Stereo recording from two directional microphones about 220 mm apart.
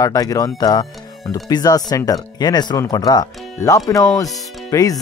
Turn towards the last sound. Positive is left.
turn(degrees=15)  # may be behind; listen again after turning